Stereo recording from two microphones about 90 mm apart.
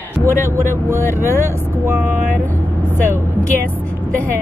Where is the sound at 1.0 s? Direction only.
25° left (ahead or behind).